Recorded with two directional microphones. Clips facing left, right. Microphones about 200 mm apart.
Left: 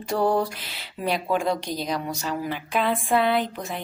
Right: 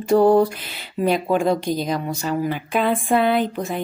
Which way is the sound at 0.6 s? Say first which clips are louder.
Right 7 dB; 50° right (ahead or behind).